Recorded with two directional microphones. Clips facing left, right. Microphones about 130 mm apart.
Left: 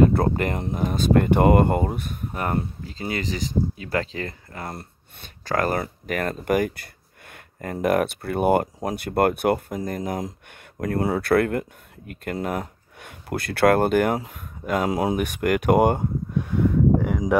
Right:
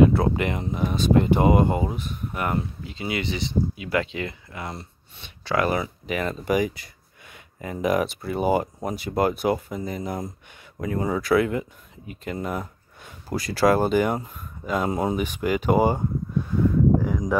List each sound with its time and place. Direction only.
0.0 s speech: 50° left (ahead or behind)
2.3 s speech: 40° left (ahead or behind)
10.8 s speech: 75° left (ahead or behind); by 14.1 s 55° left (ahead or behind)
14.1 s speech: 75° left (ahead or behind)
15.1 s speech: 60° left (ahead or behind)